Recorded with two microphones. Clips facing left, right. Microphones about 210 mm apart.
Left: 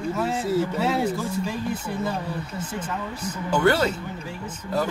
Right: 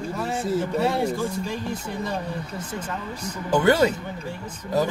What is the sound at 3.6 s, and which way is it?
Speech, 20° right (ahead or behind).